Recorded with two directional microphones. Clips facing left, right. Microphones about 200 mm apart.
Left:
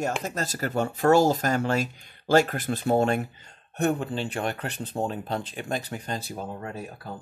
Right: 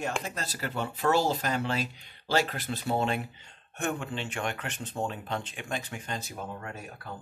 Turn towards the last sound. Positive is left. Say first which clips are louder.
# left 4 dB
turn(degrees=30)  # may be behind; listen again after turning